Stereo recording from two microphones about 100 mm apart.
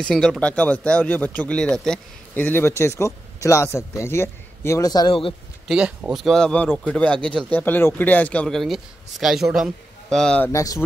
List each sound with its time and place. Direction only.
0.0 s speech: 5° left (ahead or behind); by 5.1 s 40° left (ahead or behind)
5.7 s speech: 10° right (ahead or behind)
6.2 s speech: 5° left (ahead or behind)
8.5 s a man's voice: centre (ahead or behind)
10.0 s speech: 5° left (ahead or behind)
10.5 s speech: 35° left (ahead or behind)